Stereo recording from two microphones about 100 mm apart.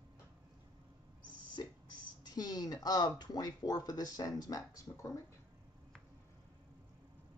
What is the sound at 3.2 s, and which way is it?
Speech, 40° left (ahead or behind).